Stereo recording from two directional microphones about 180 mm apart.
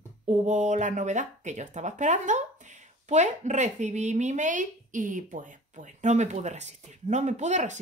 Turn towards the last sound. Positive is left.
turn(degrees=-40)  # may be behind; listen again after turning